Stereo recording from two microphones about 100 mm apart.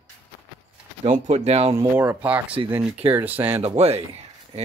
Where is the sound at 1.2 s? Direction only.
90° right.